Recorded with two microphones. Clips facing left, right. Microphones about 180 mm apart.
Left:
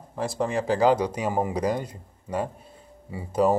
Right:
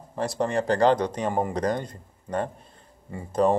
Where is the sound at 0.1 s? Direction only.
Centre (ahead or behind).